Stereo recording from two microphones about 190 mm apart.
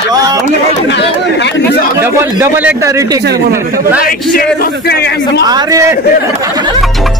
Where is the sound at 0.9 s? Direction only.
65° left (ahead or behind).